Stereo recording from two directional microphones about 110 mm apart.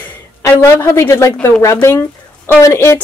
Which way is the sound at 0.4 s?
25° left (ahead or behind).